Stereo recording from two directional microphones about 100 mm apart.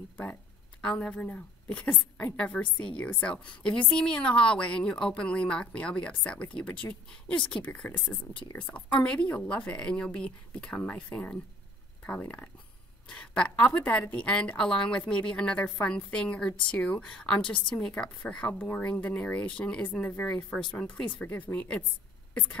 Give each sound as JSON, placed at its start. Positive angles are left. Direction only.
{"t": 0.2, "sound": "a woman's voice", "side_deg": 15}